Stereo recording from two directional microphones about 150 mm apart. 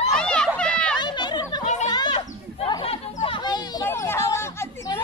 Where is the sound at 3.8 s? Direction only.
20° left (ahead or behind).